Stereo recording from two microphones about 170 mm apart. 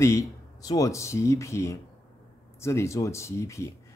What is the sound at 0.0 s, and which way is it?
Speech, 15° left (ahead or behind).